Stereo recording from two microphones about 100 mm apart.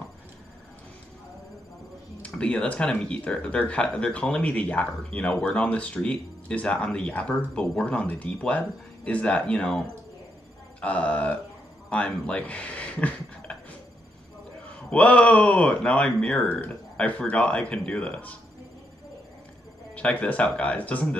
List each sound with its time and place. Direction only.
2.2 s speech: 10° left (ahead or behind)
14.9 s speech: 15° left (ahead or behind)
19.9 s speech: 15° left (ahead or behind)